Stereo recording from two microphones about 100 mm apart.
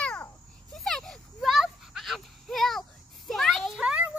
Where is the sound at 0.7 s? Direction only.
5° left (ahead or behind).